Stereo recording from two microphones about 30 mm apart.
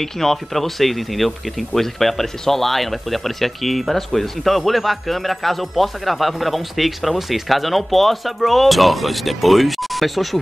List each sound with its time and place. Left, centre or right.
0.0 s speech: centre